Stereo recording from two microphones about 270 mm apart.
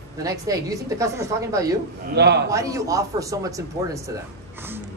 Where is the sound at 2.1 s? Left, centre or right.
Right.